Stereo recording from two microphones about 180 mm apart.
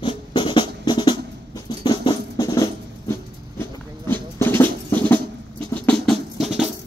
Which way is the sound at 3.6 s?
10° left (ahead or behind).